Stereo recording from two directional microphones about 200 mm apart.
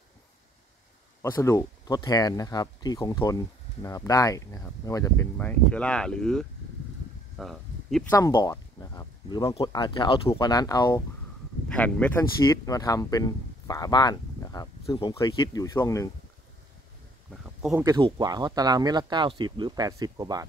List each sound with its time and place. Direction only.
1.2 s speech: 15° left (ahead or behind)
7.3 s a sound: centre (ahead or behind)
8.1 s speech: 20° left (ahead or behind)
11.7 s speech: 5° left (ahead or behind)
17.6 s speech: centre (ahead or behind)
17.8 s speech: 20° right (ahead or behind)